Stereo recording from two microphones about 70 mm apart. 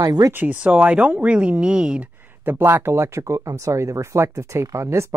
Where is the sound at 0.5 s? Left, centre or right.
Centre.